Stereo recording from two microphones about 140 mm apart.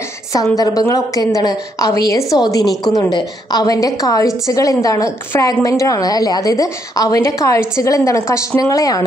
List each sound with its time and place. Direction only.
0.3 s a woman's voice: 25° left (ahead or behind)